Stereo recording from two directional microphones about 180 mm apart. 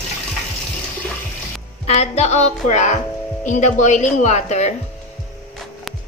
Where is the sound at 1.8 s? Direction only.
35° left (ahead or behind).